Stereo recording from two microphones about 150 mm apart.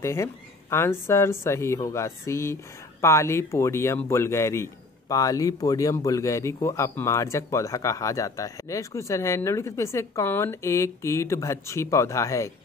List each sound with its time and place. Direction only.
0.0 s speech: 20° left (ahead or behind)